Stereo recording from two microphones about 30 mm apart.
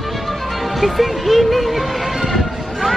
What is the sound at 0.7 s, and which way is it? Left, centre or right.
Speech, centre.